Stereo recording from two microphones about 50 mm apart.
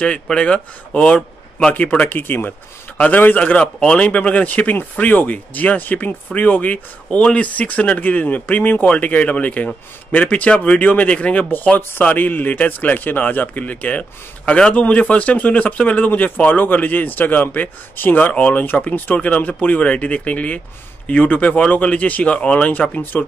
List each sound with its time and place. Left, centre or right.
0.0 s a man's voice: left
2.0 s a man's voice: left